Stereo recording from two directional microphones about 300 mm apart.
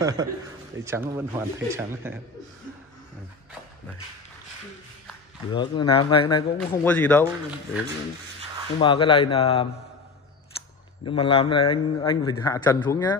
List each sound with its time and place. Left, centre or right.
0.0 s speech: centre
5.5 s a man's voice: centre
8.7 s a man's voice: centre
11.1 s a man's voice: centre